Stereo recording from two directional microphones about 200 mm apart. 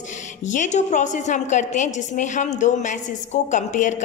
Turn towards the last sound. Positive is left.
turn(degrees=40)  # may be behind; listen again after turning